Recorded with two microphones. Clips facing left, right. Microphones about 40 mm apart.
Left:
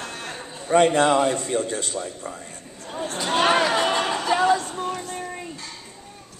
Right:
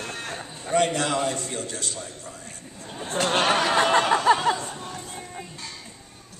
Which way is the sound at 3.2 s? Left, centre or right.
Right.